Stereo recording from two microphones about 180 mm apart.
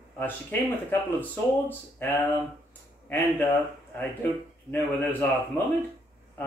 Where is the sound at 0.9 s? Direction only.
10° left (ahead or behind).